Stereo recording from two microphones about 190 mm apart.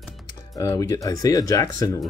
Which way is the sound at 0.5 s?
15° left (ahead or behind).